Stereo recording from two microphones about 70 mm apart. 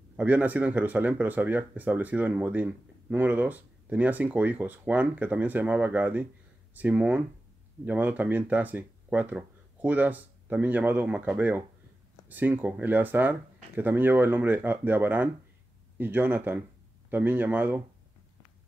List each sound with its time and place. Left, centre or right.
0.2 s speech: right